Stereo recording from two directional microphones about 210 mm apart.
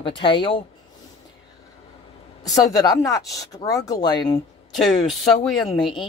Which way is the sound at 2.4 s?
15° left (ahead or behind).